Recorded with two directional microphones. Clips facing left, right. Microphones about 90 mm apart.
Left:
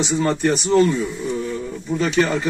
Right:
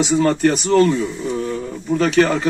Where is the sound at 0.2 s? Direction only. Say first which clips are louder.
Right 3 dB; 70° right (ahead or behind).